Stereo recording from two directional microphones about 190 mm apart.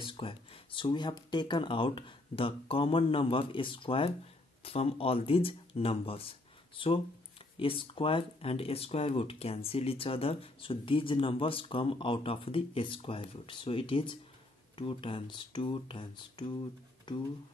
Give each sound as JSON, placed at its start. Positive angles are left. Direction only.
{"t": 0.0, "sound": "speech", "side_deg": 30}
{"t": 7.5, "sound": "speech", "side_deg": 30}